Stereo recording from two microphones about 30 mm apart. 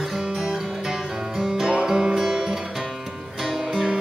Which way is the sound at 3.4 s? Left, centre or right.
Centre.